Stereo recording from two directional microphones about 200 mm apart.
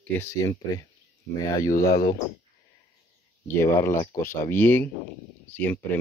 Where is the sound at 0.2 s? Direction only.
15° left (ahead or behind).